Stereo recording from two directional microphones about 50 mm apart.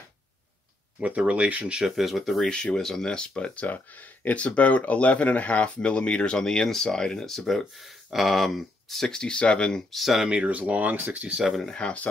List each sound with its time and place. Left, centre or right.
0.9 s speech: right
2.0 s speech: centre
2.4 s speech: centre
10.2 s speech: centre
10.5 s speech: right
11.5 s speech: centre